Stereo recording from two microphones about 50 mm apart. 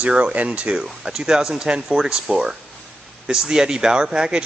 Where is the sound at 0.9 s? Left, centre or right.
Centre.